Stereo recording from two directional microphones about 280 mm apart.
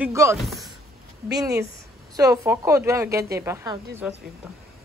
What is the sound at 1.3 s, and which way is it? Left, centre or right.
Speech, centre.